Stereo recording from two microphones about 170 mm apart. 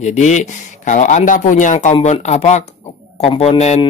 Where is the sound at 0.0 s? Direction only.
45° left (ahead or behind).